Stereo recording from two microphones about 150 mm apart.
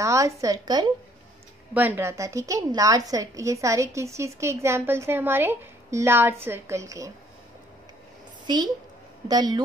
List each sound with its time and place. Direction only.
0.0 s a woman's voice: 20° right (ahead or behind)
1.7 s a woman's voice: 10° right (ahead or behind)
9.3 s a woman's voice: 25° right (ahead or behind)